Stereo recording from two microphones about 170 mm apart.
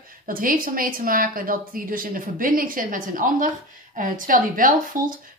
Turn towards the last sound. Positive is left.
turn(degrees=-55)  # may be behind; listen again after turning